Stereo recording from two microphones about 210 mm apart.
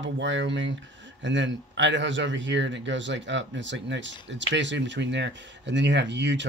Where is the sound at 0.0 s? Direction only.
60° right (ahead or behind).